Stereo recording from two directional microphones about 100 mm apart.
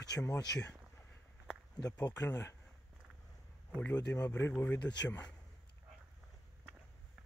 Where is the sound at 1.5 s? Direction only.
10° right (ahead or behind).